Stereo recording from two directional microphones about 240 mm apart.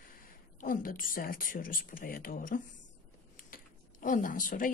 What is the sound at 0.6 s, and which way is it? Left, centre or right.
A woman's voice, left.